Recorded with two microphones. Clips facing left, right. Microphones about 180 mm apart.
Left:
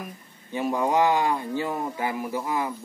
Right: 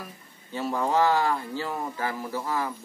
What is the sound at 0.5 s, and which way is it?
A man's voice, 15° left (ahead or behind).